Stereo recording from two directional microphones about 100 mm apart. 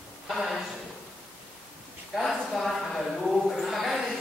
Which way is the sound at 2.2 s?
Centre (ahead or behind).